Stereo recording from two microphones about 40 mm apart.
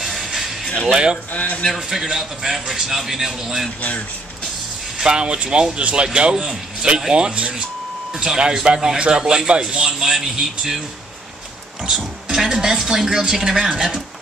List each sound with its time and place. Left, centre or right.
0.0 s music: centre
0.8 s speech: right
1.3 s speech: left
1.8 s speech: centre
4.9 s a man's voice: right
8.1 s a sound: centre
8.7 s speech: centre
12.4 s speech: centre